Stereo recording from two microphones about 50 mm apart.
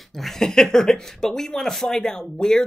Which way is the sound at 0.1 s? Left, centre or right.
Centre.